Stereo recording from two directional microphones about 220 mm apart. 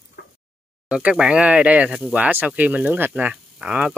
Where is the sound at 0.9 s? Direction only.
5° right (ahead or behind).